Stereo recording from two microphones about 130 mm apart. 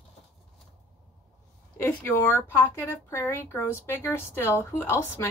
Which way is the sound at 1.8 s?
15° left (ahead or behind).